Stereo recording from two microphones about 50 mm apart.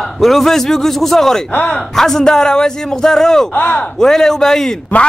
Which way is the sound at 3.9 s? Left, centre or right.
Centre.